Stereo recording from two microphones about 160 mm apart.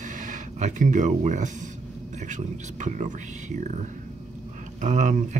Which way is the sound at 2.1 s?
50° right (ahead or behind).